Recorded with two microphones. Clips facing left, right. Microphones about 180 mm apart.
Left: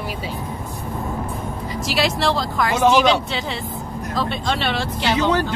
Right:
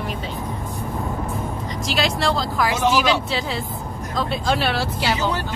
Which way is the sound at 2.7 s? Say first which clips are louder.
Left 6 dB; 60° left (ahead or behind).